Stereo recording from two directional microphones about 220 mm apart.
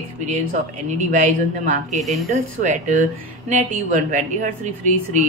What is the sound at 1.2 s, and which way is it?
Speech, 35° right (ahead or behind).